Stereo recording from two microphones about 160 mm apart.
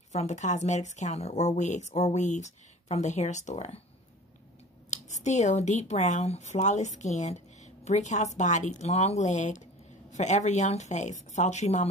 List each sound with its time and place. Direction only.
0.1 s speech: 45° left (ahead or behind)
4.9 s speech: 45° left (ahead or behind)